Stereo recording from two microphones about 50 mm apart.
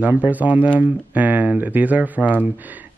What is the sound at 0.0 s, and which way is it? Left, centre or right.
A man's voice, right.